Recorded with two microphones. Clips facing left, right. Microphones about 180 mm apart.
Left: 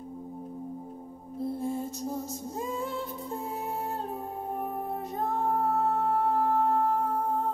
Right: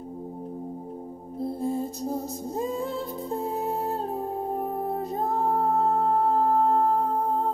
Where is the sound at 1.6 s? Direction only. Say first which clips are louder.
Right 4 dB; 35° right (ahead or behind).